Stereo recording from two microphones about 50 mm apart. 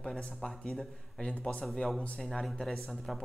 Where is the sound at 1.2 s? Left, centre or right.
Left.